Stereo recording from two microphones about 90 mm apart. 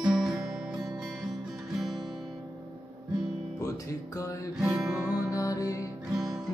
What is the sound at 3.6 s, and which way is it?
Music, 35° left (ahead or behind).